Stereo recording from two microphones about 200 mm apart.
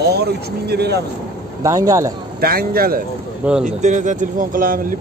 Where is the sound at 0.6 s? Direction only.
55° right (ahead or behind).